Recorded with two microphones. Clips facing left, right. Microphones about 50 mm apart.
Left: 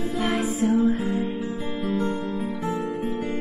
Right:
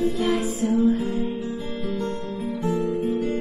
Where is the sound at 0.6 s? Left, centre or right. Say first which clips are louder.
Right 1 dB; left.